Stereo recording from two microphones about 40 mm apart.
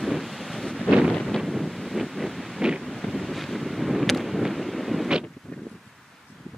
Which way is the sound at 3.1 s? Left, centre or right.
Centre.